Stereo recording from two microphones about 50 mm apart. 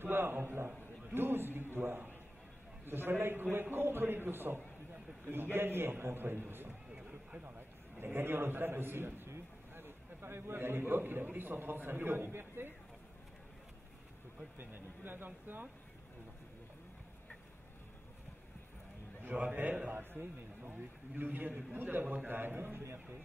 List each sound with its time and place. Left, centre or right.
0.0 s a man's voice: right
7.0 s a sound: right
8.0 s a man's voice: right
14.6 s speech: right
19.3 s a man's voice: right
19.9 s a man's voice: right